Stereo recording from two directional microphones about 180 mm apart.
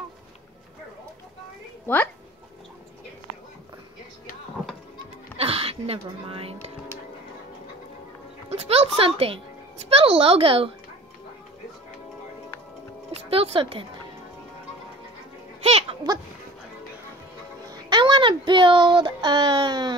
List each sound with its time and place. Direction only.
5.4 s speech: 35° right (ahead or behind)
8.5 s a woman's voice: 35° right (ahead or behind)
13.3 s a woman's voice: 30° right (ahead or behind)
15.6 s a sound: 35° right (ahead or behind)
17.6 s speech: 25° right (ahead or behind)